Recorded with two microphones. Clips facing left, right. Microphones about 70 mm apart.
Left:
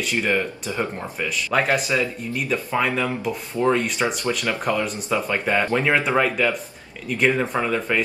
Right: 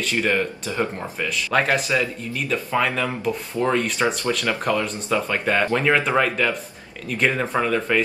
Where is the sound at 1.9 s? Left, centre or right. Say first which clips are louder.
Even; centre.